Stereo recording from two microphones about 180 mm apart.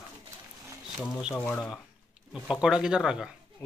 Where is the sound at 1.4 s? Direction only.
5° left (ahead or behind).